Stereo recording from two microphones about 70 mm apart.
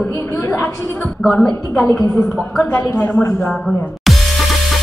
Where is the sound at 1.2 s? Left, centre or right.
Centre.